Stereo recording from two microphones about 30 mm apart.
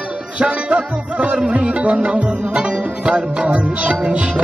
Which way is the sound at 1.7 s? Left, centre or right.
Right.